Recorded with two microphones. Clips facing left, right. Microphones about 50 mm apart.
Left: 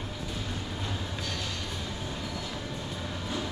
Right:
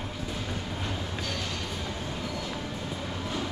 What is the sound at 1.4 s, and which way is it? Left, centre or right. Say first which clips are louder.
Music: right 2 dB; centre.